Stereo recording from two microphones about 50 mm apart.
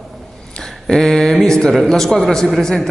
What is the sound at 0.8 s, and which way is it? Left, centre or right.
A man's voice, centre.